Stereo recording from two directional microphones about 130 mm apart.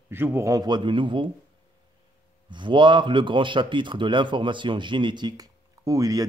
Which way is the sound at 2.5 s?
40° right (ahead or behind).